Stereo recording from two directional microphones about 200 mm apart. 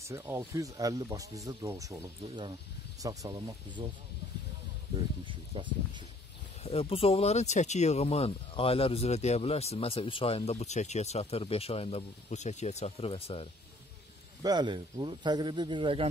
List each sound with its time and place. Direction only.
0.0 s speech: 15° right (ahead or behind)
5.2 s speech: 25° right (ahead or behind)
6.6 s speech: 30° left (ahead or behind)
14.4 s speech: 20° right (ahead or behind)